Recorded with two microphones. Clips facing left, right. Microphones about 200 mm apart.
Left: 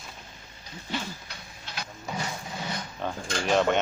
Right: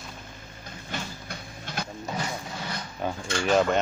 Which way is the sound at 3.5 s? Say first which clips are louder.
Right 1 dB; centre (ahead or behind).